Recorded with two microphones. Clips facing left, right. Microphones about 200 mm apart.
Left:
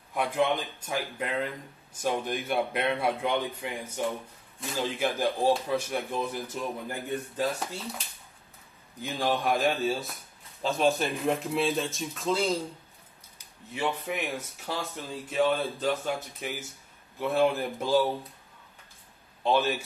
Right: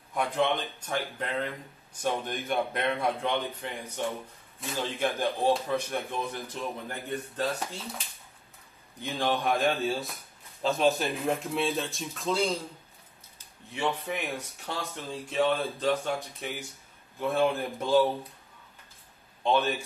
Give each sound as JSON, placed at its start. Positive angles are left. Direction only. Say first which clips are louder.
{"t": 0.1, "sound": "speech", "louder": "left 1 dB", "side_deg": 5}
{"t": 9.0, "sound": "speech", "louder": "even", "side_deg": 0}
{"t": 13.7, "sound": "speech", "louder": "even", "side_deg": 0}
{"t": 19.4, "sound": "speech", "louder": "left 1 dB", "side_deg": 0}